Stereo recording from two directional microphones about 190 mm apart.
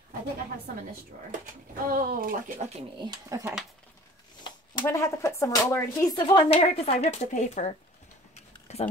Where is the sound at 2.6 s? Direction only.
30° right (ahead or behind).